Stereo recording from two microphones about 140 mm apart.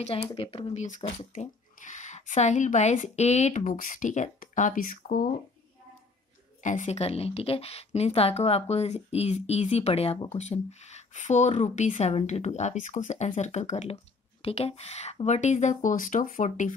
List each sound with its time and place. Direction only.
0.0 s a woman's voice: 45° left (ahead or behind)
1.3 s speech: 60° left (ahead or behind); by 5.3 s 75° left (ahead or behind)
6.6 s a woman's voice: 60° left (ahead or behind)